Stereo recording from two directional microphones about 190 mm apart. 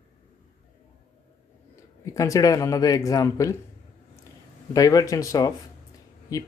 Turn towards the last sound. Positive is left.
turn(degrees=20)  # may be behind; listen again after turning